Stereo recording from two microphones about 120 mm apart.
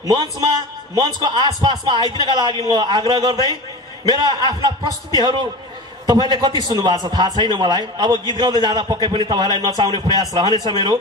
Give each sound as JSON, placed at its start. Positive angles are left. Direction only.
{"t": 0.0, "sound": "a man's voice", "side_deg": -35}